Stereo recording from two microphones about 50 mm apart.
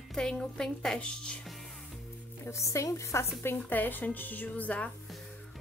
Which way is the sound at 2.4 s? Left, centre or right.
Left.